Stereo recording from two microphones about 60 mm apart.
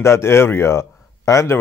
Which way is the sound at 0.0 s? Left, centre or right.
Left.